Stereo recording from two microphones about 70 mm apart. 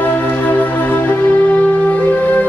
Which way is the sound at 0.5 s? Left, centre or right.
Left.